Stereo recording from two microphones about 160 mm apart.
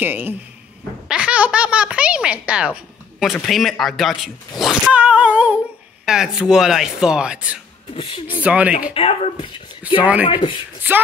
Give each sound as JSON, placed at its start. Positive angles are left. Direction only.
{"t": 0.0, "sound": "speech", "side_deg": -10}
{"t": 7.9, "sound": "speech", "side_deg": 35}
{"t": 8.4, "sound": "speech", "side_deg": -10}
{"t": 8.9, "sound": "speech", "side_deg": 35}
{"t": 9.8, "sound": "speech", "side_deg": -10}
{"t": 10.2, "sound": "speech", "side_deg": 30}